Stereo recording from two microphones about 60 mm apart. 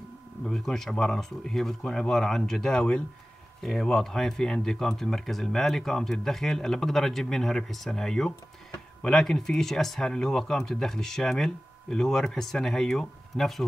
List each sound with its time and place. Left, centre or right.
0.4 s speech: centre